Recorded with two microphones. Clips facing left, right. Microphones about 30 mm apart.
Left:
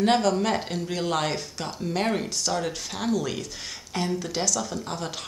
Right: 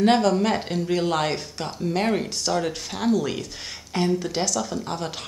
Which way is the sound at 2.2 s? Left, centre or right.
Centre.